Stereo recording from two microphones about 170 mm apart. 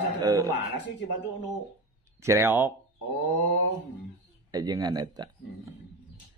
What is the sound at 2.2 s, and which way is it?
Speech, 15° right (ahead or behind).